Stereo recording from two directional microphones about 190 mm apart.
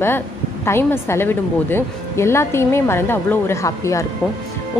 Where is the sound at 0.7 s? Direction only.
10° left (ahead or behind).